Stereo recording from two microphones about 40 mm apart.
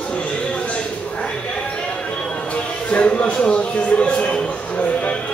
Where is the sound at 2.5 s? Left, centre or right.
Left.